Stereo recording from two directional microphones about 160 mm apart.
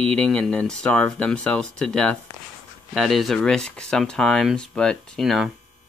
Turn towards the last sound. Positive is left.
turn(degrees=0)  # may be behind; listen again after turning